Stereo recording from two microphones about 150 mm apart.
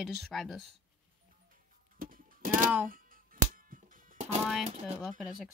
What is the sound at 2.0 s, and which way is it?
Music, 70° right (ahead or behind).